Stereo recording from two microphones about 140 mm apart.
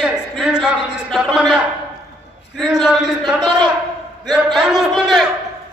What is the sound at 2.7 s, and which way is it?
A man's voice, centre (ahead or behind).